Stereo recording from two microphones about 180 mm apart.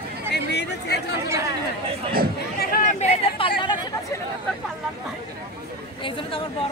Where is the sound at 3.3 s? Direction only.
30° left (ahead or behind).